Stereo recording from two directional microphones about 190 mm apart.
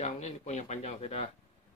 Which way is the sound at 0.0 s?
40° left (ahead or behind).